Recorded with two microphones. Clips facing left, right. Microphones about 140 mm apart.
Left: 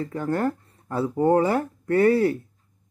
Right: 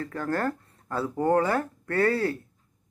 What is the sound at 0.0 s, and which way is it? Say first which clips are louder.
Speech: left 3 dB; 20° left (ahead or behind).